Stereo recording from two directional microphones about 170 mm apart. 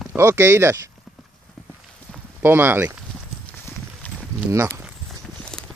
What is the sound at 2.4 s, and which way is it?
Speech, 10° right (ahead or behind).